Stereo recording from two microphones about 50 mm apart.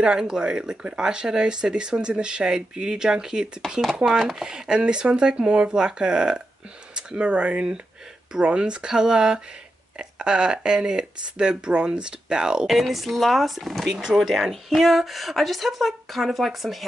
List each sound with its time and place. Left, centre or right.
0.0 s speech: centre
12.6 s speech: centre